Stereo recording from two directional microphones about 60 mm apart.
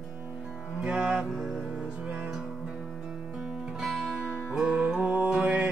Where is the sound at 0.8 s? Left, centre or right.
Centre.